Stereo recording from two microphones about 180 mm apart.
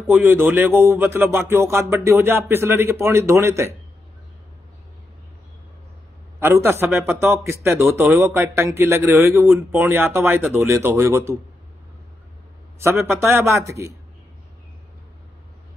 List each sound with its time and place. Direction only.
0.1 s speech: 10° right (ahead or behind)
6.4 s speech: 15° right (ahead or behind)
12.7 s speech: 15° right (ahead or behind)